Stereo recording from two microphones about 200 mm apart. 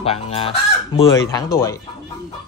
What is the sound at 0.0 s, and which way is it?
Fowl, 30° left (ahead or behind).